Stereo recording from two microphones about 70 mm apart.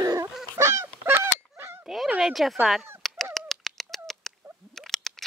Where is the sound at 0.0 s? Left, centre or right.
Right.